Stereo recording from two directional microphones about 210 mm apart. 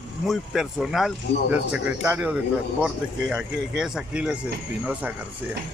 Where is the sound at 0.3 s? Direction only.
Centre (ahead or behind).